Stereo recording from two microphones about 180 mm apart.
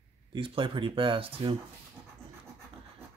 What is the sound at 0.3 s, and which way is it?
Speech, 25° right (ahead or behind).